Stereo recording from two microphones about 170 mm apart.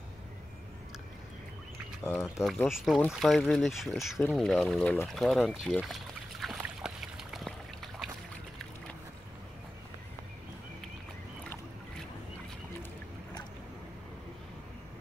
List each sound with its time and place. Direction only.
2.0 s speech: 15° left (ahead or behind)
2.7 s speech: centre (ahead or behind)
5.0 s trickle: centre (ahead or behind)